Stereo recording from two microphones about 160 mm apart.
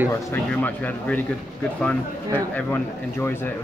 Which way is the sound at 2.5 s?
15° left (ahead or behind).